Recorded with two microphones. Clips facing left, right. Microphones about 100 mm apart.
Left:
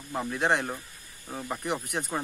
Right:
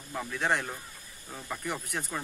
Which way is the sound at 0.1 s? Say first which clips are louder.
Left 3 dB; 25° left (ahead or behind).